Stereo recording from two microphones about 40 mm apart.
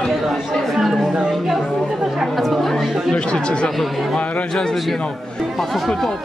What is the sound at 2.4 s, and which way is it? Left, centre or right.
Speech, centre.